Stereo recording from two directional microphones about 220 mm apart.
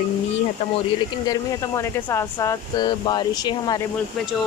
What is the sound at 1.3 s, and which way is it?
Speech, 15° left (ahead or behind).